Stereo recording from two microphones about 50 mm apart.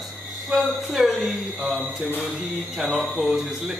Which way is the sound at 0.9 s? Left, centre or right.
Centre.